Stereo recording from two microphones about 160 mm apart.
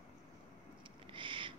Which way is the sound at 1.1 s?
30° right (ahead or behind).